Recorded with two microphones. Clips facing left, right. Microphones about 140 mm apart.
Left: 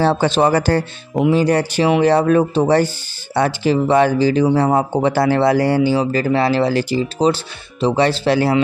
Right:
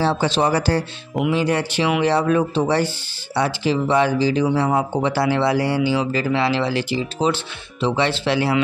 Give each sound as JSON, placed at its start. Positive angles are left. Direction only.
{"t": 0.0, "sound": "speech", "side_deg": 55}
{"t": 1.1, "sound": "speech", "side_deg": 35}